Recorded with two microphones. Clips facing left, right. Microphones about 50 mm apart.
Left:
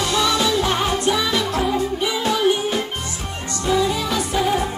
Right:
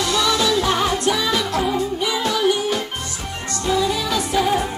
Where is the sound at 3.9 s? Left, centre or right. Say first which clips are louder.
Even; left.